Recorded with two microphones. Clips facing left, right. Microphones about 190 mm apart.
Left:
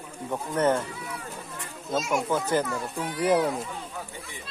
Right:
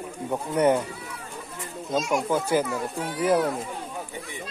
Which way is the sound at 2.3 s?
10° right (ahead or behind).